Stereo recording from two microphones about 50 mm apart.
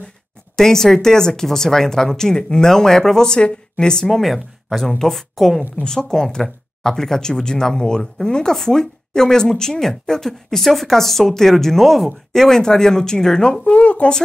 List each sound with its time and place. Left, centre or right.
0.6 s speech: centre
13.7 s speech: left